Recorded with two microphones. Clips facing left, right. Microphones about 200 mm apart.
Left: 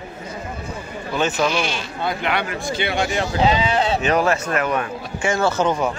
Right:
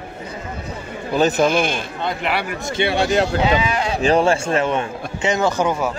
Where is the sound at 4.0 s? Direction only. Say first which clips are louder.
Right 3 dB; 30° right (ahead or behind); by 5.9 s 10° right (ahead or behind).